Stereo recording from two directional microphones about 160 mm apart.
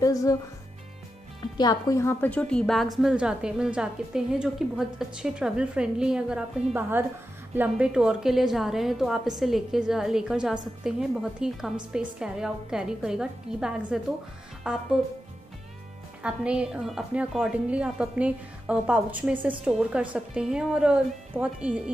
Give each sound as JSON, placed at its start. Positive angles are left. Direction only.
{"t": 0.0, "sound": "speech", "side_deg": 20}
{"t": 1.6, "sound": "a woman's voice", "side_deg": 25}
{"t": 16.2, "sound": "a woman's voice", "side_deg": -5}